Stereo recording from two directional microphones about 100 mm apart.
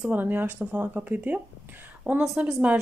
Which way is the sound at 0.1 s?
20° right (ahead or behind).